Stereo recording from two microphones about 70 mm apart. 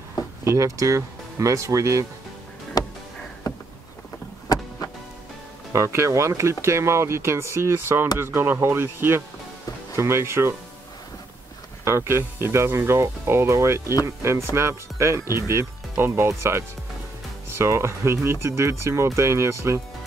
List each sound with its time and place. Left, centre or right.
0.4 s speech: right
2.8 s music: left
3.4 s a sound: left
4.5 s power windows: left
5.7 s speech: right
11.8 s speech: right